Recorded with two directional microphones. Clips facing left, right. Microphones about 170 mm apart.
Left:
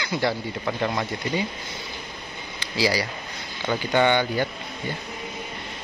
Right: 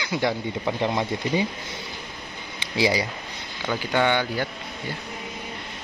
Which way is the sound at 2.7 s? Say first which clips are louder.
Right 1 dB; 20° right (ahead or behind).